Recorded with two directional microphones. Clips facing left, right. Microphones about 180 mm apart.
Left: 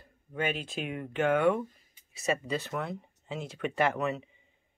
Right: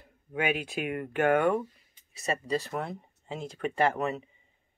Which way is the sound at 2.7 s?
35° right (ahead or behind).